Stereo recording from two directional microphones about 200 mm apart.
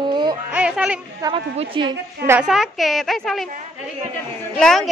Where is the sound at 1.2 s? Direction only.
20° right (ahead or behind).